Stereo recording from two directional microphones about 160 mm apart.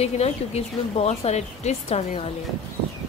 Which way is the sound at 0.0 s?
40° left (ahead or behind).